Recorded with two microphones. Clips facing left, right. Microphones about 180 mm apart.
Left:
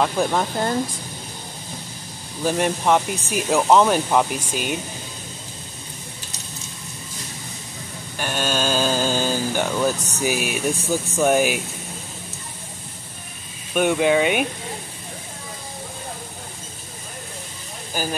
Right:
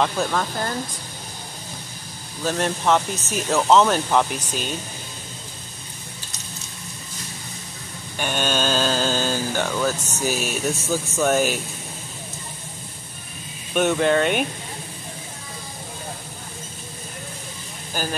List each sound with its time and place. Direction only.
0.0 s speech: 15° left (ahead or behind)
2.4 s speech: 10° left (ahead or behind)
8.2 s speech: 5° left (ahead or behind)
13.7 s speech: 10° left (ahead or behind)
18.0 s speech: 10° left (ahead or behind)